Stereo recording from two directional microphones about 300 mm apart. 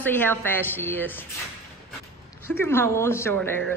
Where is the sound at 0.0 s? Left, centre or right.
Centre.